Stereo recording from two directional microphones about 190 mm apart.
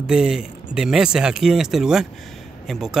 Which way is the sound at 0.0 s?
5° right (ahead or behind).